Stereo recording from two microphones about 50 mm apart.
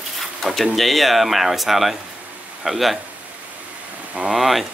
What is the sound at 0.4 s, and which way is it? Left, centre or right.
Speech, centre.